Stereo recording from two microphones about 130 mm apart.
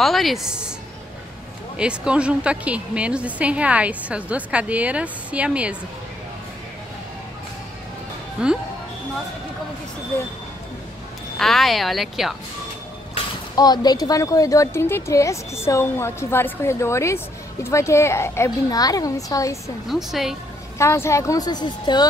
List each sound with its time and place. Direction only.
0.0 s speech: centre (ahead or behind)
1.8 s a woman's voice: 10° right (ahead or behind)
8.4 s speech: 5° right (ahead or behind)
11.3 s speech: centre (ahead or behind)
13.6 s speech: 30° left (ahead or behind)
19.9 s speech: centre (ahead or behind)
20.7 s speech: 20° left (ahead or behind)